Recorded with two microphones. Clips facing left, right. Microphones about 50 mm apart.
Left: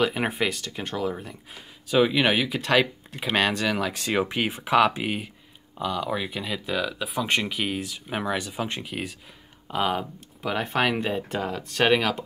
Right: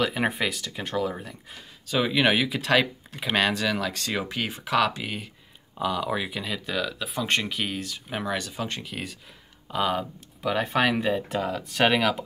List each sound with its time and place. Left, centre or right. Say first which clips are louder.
0.0 s speech: left 1 dB; centre
5.8 s speech: right 1 dB; centre